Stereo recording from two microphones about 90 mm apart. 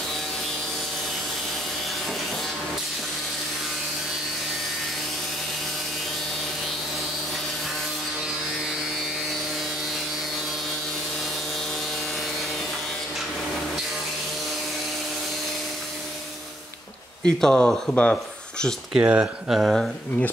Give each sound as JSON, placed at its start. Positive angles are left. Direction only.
{"t": 17.2, "sound": "speech", "side_deg": 10}
{"t": 18.9, "sound": "speech", "side_deg": -20}
{"t": 19.5, "sound": "speech", "side_deg": -5}